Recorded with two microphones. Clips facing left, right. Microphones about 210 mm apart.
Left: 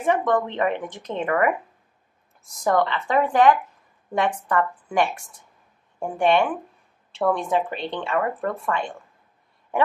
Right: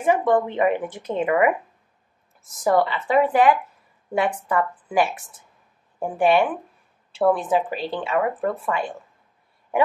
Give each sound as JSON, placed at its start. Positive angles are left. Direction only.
{"t": 0.0, "sound": "a woman's voice", "side_deg": -10}